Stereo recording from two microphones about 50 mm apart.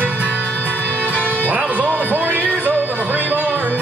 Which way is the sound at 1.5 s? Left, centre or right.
Right.